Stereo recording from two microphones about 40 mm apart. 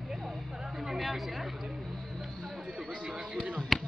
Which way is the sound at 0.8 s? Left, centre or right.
Centre.